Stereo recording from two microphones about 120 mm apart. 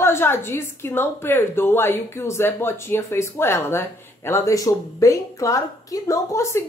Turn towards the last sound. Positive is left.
turn(degrees=25)  # may be behind; listen again after turning